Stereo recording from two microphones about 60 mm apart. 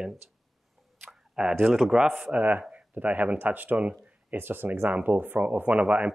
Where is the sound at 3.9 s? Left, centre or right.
Right.